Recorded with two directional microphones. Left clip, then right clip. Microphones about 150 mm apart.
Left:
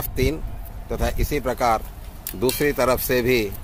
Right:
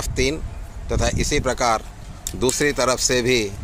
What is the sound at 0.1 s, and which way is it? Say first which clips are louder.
Speech: right 1 dB; centre (ahead or behind).